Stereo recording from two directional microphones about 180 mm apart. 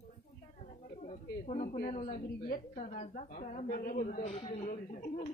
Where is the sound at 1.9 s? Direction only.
45° left (ahead or behind).